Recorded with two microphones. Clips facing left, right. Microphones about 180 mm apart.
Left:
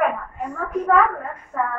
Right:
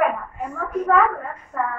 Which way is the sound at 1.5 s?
Centre (ahead or behind).